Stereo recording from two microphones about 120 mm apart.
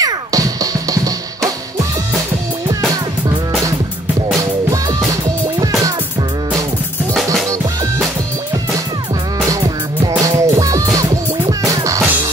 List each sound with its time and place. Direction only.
0.0 s music: 30° right (ahead or behind)
10.2 s music: 30° right (ahead or behind)